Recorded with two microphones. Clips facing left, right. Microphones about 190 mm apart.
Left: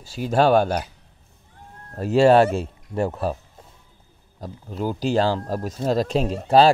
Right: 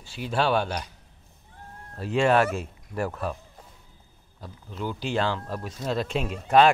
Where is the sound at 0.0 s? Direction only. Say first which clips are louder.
Left 7 dB; 40° left (ahead or behind).